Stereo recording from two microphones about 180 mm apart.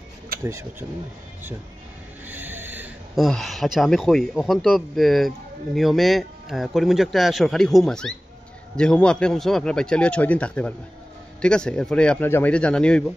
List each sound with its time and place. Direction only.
0.4 s speech: 15° right (ahead or behind)
2.2 s a sound: 10° right (ahead or behind)
3.2 s a man's voice: centre (ahead or behind)